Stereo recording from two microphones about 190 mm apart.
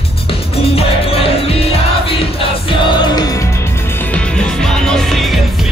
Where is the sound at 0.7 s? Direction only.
30° left (ahead or behind).